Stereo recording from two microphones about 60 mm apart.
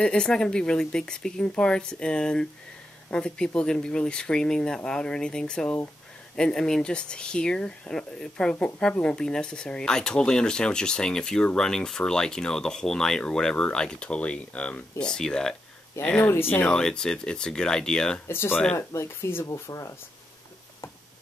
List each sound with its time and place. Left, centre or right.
0.0 s speech: centre
16.0 s speech: left
16.3 s speech: left
16.6 s speech: centre
18.2 s speech: left